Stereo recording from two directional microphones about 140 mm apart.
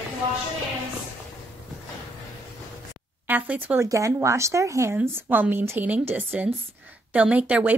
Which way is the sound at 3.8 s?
20° right (ahead or behind).